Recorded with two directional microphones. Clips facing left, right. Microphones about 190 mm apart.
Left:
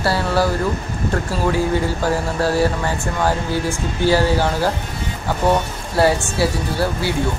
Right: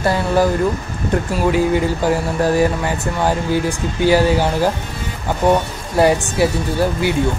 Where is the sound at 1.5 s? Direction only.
15° right (ahead or behind).